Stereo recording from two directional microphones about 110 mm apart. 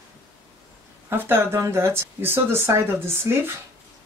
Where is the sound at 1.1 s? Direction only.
20° right (ahead or behind).